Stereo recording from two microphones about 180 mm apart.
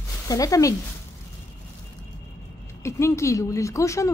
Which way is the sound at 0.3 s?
20° left (ahead or behind).